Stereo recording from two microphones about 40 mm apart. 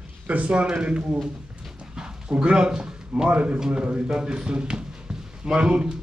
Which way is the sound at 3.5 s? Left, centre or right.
Centre.